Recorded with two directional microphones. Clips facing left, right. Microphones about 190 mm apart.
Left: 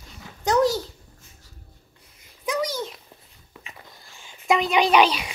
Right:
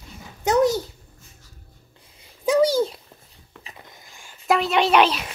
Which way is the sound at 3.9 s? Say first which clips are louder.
Right 1 dB; 20° right (ahead or behind).